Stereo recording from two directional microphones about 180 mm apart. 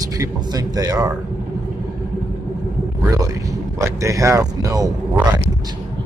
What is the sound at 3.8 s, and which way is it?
Speech, 15° right (ahead or behind).